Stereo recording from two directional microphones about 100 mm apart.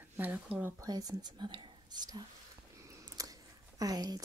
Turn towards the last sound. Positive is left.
turn(degrees=-40)  # may be behind; listen again after turning